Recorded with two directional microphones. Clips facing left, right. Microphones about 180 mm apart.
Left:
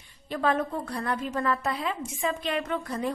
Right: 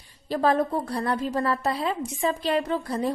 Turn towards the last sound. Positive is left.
turn(degrees=-35)  # may be behind; listen again after turning